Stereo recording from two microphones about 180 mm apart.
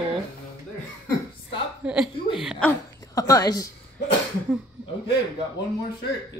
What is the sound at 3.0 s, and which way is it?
Speech, 20° left (ahead or behind).